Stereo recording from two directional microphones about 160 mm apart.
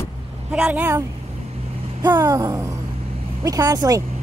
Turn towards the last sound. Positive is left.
turn(degrees=-20)  # may be behind; listen again after turning